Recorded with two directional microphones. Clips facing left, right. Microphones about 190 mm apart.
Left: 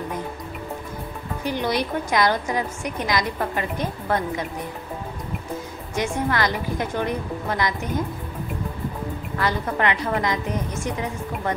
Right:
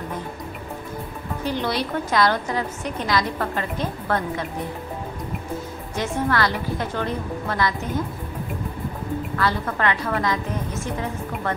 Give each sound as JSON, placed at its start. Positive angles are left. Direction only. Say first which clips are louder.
{"t": 1.4, "sound": "a woman's voice", "louder": "left 1 dB", "side_deg": 15}
{"t": 5.9, "sound": "a woman's voice", "louder": "even", "side_deg": 15}
{"t": 9.4, "sound": "a woman's voice", "louder": "left 2 dB", "side_deg": 15}